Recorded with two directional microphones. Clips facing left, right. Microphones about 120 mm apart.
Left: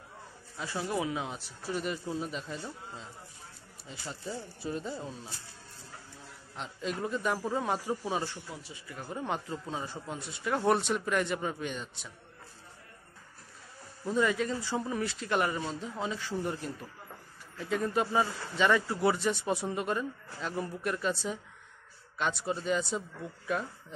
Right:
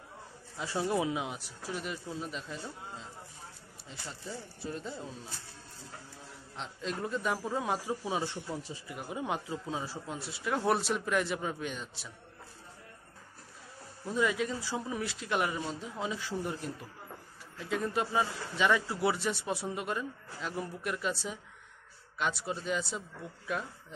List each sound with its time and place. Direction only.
0.6 s a man's voice: 25° right (ahead or behind); by 2.7 s centre (ahead or behind)
3.9 s a man's voice: 5° left (ahead or behind)
6.5 s a man's voice: 5° left (ahead or behind)
8.5 s speech: 30° right (ahead or behind)
8.8 s a man's voice: 10° right (ahead or behind)
14.0 s a man's voice: 5° right (ahead or behind)